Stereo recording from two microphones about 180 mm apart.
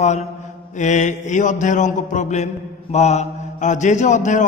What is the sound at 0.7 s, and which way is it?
Mantra, 40° left (ahead or behind).